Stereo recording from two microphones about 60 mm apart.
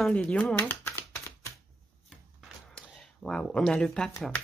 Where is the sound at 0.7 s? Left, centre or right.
Left.